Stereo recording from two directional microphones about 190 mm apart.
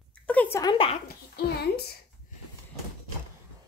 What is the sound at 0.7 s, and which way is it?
Speech, 30° left (ahead or behind).